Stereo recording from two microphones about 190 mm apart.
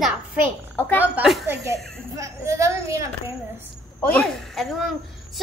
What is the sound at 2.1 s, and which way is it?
Speech, 15° right (ahead or behind).